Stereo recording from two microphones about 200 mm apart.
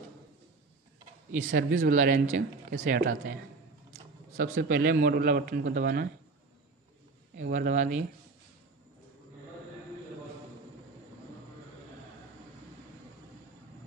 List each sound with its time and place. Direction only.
1.5 s speech: 45° right (ahead or behind)
4.4 s speech: 50° right (ahead or behind)
7.5 s speech: 40° right (ahead or behind)